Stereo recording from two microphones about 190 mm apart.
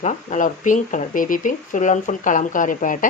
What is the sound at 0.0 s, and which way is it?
Speech, 40° left (ahead or behind).